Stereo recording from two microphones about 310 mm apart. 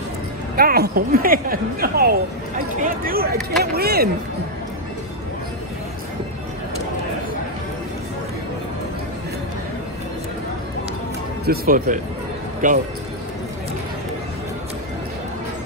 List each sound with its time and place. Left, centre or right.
0.6 s a woman's voice: right
11.4 s a woman's voice: right